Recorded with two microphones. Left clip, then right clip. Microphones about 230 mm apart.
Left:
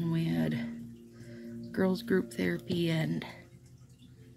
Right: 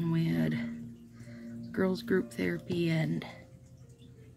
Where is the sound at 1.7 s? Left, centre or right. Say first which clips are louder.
Even; centre.